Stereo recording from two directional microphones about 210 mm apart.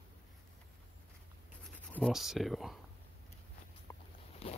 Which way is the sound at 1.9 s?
5° left (ahead or behind).